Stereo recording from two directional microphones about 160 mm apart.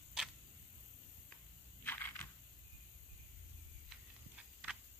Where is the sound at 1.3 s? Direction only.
10° left (ahead or behind).